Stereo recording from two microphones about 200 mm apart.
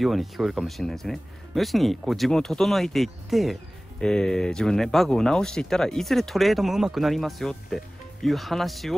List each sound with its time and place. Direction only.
0.0 s speech: centre (ahead or behind)